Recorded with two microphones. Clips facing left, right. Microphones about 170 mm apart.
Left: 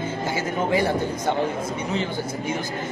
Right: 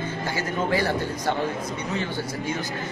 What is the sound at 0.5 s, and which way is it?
Speech, 20° left (ahead or behind).